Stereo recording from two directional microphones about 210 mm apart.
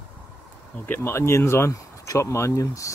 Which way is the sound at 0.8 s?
10° left (ahead or behind).